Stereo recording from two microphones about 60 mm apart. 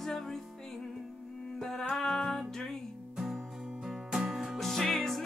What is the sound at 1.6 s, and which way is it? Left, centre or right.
Music, centre.